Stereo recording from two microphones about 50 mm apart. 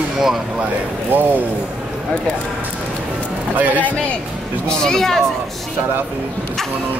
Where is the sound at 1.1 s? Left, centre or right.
Right.